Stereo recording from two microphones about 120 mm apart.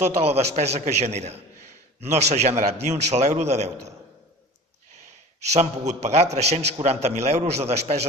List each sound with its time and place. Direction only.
0.0 s a man's voice: 65° right (ahead or behind)
5.5 s a man's voice: 70° right (ahead or behind)